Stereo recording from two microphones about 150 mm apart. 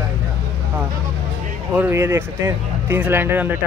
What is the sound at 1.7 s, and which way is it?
Speech, 15° right (ahead or behind).